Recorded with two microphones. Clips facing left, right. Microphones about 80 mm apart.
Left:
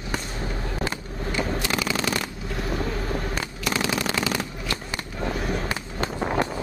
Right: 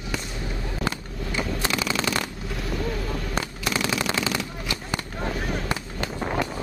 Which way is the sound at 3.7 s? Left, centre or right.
Left.